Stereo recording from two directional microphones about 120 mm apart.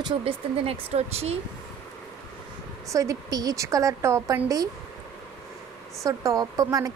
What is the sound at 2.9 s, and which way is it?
Speech, 30° right (ahead or behind).